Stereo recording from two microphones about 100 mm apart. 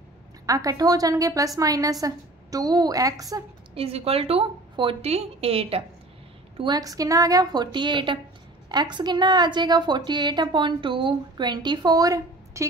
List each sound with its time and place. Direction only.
0.5 s a woman's voice: 35° right (ahead or behind)
3.7 s a woman's voice: 85° right
6.6 s a woman's voice: 40° right (ahead or behind)